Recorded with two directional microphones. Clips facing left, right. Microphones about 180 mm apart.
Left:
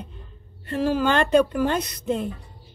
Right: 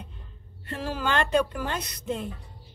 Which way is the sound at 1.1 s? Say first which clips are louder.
Left 3 dB; 40° left (ahead or behind).